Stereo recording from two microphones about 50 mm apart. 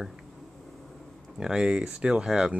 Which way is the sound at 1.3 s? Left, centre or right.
Centre.